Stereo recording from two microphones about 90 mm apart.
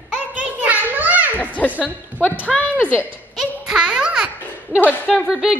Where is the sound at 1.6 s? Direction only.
15° left (ahead or behind).